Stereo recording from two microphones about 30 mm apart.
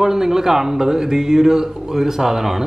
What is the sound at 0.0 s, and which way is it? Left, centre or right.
A man's voice, centre.